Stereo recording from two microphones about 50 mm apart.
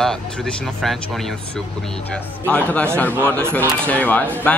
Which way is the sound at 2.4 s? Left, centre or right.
Left.